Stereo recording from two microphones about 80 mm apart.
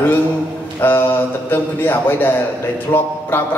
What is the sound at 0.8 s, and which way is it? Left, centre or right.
A man's voice, left.